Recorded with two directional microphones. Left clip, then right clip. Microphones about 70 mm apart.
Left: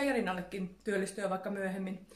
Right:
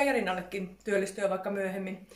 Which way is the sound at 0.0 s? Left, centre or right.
Left.